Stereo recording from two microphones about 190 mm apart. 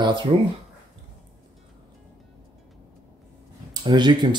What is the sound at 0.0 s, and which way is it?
Speech, 25° right (ahead or behind).